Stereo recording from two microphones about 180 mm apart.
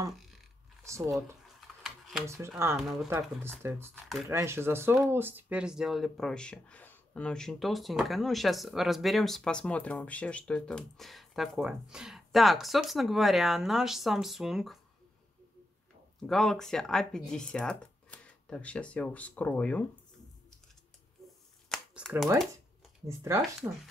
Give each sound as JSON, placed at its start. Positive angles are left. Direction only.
{"t": 0.8, "sound": "speech", "side_deg": -15}
{"t": 1.8, "sound": "a sound", "side_deg": 0}
{"t": 2.2, "sound": "speech", "side_deg": -15}
{"t": 2.8, "sound": "speech", "side_deg": 0}
{"t": 3.1, "sound": "speech", "side_deg": -15}
{"t": 16.2, "sound": "speech", "side_deg": 0}
{"t": 21.6, "sound": "a sound", "side_deg": 0}
{"t": 23.0, "sound": "speech", "side_deg": -15}